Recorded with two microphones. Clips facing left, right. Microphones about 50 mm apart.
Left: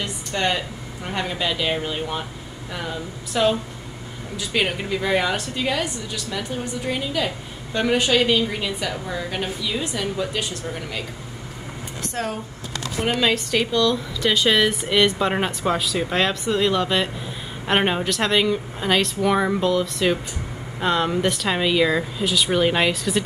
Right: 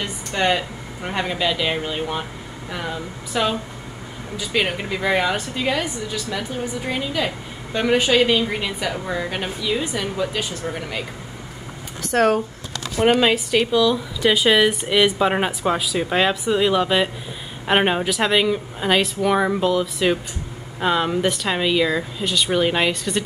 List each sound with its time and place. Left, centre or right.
0.0 s a woman's voice: centre
12.1 s speech: right
13.1 s a woman's voice: centre